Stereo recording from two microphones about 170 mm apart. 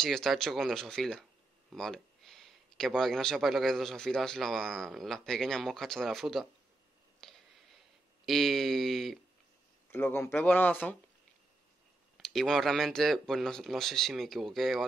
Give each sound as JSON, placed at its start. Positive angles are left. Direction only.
{"t": 0.0, "sound": "speech", "side_deg": 0}
{"t": 7.2, "sound": "a sound", "side_deg": 5}
{"t": 8.3, "sound": "speech", "side_deg": 0}
{"t": 9.8, "sound": "speech", "side_deg": 15}
{"t": 12.2, "sound": "speech", "side_deg": 0}